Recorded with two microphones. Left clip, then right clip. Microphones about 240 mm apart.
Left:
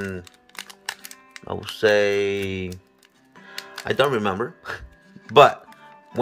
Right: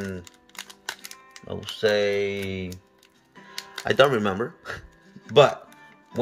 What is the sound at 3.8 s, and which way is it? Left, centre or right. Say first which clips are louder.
Speech: right 1 dB; centre.